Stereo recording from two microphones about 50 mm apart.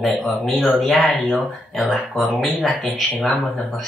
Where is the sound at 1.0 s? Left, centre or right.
Left.